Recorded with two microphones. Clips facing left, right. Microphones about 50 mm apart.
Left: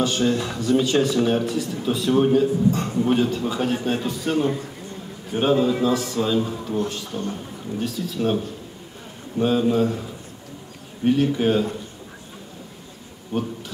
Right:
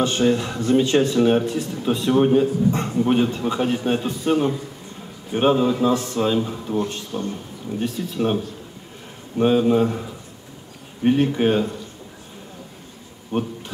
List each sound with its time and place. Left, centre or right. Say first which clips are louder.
0.0 s a man's voice: right 2 dB; right
9.4 s a man's voice: right 3 dB; right
11.1 s a man's voice: right 1 dB; right
13.3 s a man's voice: right 2 dB; right